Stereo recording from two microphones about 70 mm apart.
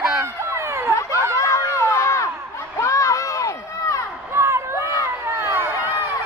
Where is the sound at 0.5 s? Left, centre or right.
Right.